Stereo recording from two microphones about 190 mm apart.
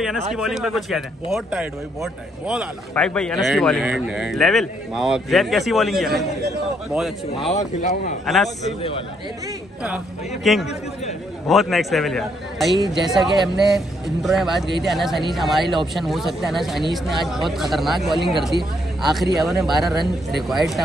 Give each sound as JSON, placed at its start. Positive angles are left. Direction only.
{"t": 0.0, "sound": "speech", "side_deg": 0}
{"t": 7.5, "sound": "speech", "side_deg": 35}
{"t": 8.3, "sound": "speech", "side_deg": 0}
{"t": 9.8, "sound": "a woman's voice", "side_deg": -5}